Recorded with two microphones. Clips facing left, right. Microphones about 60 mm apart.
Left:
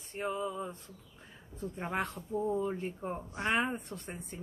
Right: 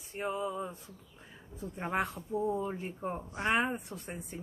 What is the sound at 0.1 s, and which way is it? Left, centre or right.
A woman's voice, centre.